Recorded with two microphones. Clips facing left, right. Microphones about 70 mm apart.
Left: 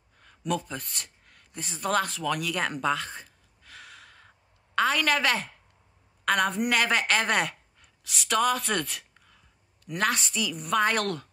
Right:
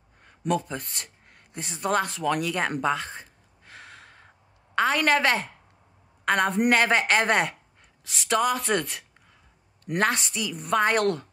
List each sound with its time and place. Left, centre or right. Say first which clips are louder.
0.5 s a woman's voice: right 3 dB; right
2.8 s a sound: right 2 dB; right
4.7 s a woman's voice: right 2 dB; right